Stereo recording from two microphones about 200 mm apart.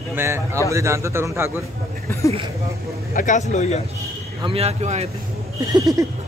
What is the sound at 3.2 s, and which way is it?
Speech, 40° left (ahead or behind).